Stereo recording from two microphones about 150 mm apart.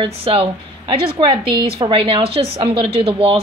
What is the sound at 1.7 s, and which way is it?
A woman's voice, 35° right (ahead or behind).